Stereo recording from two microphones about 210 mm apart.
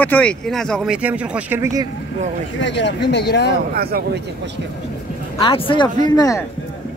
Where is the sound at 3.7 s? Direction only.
45° right (ahead or behind).